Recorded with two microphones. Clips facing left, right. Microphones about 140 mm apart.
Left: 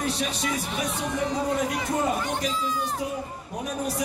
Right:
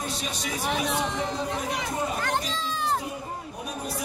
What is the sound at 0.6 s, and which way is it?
Speech, 90° right.